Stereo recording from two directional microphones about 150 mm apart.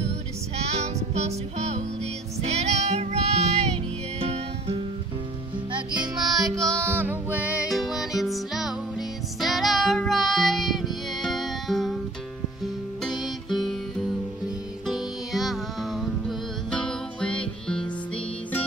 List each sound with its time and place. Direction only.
0.7 s music: 45° right (ahead or behind)
6.1 s music: centre (ahead or behind)
6.8 s music: 15° right (ahead or behind); by 12.0 s centre (ahead or behind)
13.0 s music: centre (ahead or behind)
14.9 s music: centre (ahead or behind)